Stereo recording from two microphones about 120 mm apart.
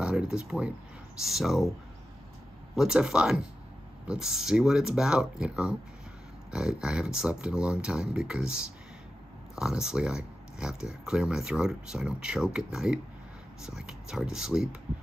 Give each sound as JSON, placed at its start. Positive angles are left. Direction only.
{"t": 0.0, "sound": "speech", "side_deg": -10}
{"t": 2.7, "sound": "speech", "side_deg": -5}